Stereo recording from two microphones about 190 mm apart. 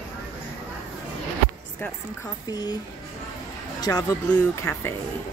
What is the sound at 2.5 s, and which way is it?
Speech, 20° left (ahead or behind).